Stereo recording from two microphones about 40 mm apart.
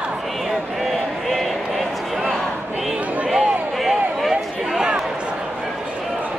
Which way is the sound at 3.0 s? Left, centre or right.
Right.